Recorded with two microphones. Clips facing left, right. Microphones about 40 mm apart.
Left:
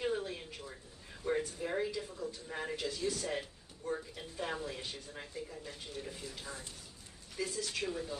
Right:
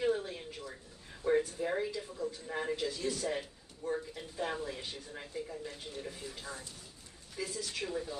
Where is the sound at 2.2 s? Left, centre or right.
Centre.